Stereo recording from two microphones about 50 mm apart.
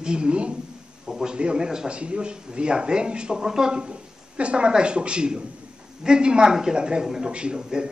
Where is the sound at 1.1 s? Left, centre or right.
Centre.